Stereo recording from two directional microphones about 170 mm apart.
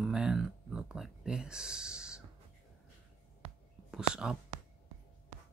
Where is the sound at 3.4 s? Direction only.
35° right (ahead or behind).